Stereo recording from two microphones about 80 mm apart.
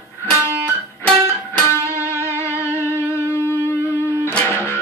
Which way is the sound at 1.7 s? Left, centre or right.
Left.